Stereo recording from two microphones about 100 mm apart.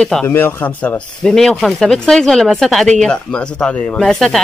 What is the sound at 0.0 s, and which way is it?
Speech, 5° left (ahead or behind).